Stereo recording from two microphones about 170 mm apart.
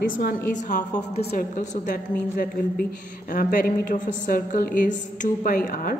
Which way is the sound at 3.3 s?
55° left (ahead or behind).